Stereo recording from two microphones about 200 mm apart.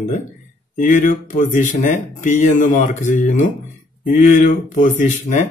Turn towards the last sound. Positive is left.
turn(degrees=35)  # may be behind; listen again after turning